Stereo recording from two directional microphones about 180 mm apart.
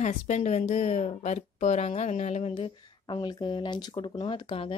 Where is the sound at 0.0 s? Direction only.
40° left (ahead or behind).